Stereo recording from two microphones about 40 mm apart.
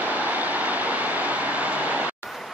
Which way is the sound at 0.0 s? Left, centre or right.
Right.